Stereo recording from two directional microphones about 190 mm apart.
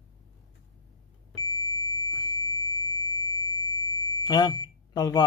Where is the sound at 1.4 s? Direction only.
20° left (ahead or behind).